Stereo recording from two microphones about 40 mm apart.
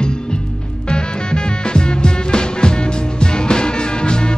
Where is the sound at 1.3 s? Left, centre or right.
Left.